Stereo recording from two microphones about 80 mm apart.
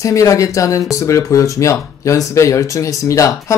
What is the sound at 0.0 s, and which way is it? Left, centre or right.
Speech, left.